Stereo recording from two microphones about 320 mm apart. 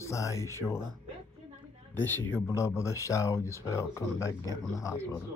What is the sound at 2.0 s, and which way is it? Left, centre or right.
Speech, centre.